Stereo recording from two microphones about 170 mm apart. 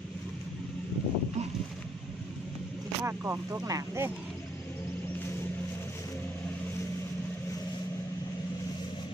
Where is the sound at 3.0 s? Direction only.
15° right (ahead or behind).